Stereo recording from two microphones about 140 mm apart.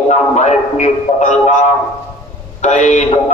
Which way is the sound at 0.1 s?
55° left (ahead or behind).